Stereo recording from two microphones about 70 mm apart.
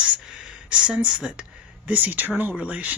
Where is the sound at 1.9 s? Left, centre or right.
Right.